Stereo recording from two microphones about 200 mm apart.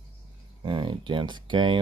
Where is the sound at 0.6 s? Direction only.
25° right (ahead or behind).